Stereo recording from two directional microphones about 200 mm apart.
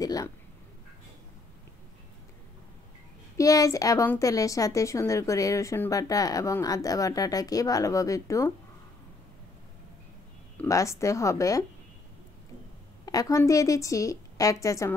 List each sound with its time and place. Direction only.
0.0 s a sound: 20° left (ahead or behind)
3.3 s a woman's voice: 15° left (ahead or behind)
10.6 s a woman's voice: 15° left (ahead or behind)
13.0 s a woman's voice: 20° left (ahead or behind)